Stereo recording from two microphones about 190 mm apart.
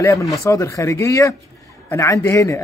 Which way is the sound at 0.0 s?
15° left (ahead or behind).